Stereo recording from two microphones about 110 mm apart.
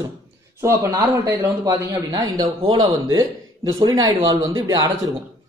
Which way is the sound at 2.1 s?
40° right (ahead or behind).